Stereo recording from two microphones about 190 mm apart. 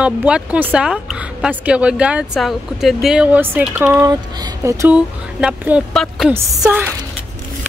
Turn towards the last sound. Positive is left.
turn(degrees=-15)  # may be behind; listen again after turning